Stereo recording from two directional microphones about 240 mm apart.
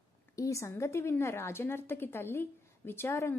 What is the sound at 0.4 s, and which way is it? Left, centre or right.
A woman's voice, centre.